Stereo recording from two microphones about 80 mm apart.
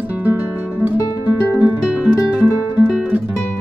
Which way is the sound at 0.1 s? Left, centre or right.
Right.